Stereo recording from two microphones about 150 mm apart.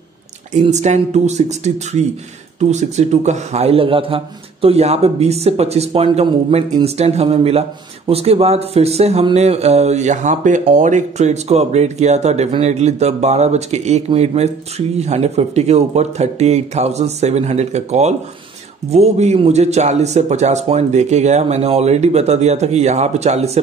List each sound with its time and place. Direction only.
0.5 s speech: 50° right (ahead or behind)